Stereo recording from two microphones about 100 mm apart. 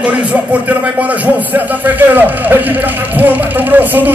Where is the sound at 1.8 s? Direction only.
15° right (ahead or behind).